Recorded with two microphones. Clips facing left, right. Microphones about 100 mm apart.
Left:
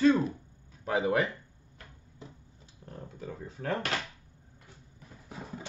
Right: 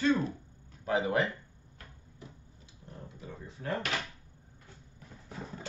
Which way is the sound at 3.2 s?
45° left (ahead or behind).